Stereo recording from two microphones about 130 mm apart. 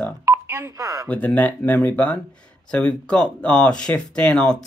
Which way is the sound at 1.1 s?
10° left (ahead or behind).